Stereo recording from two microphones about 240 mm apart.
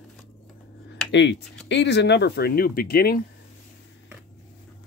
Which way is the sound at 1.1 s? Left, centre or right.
Left.